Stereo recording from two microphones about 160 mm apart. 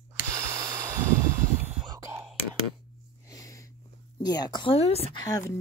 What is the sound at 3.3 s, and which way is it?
Sniff, 20° left (ahead or behind).